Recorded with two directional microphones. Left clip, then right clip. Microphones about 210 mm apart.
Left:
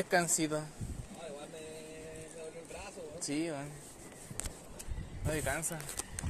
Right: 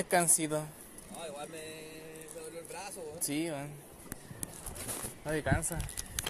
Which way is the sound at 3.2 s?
25° right (ahead or behind).